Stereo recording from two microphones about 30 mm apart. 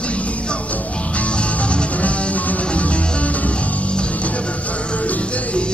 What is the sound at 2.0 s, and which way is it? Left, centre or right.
Music, left.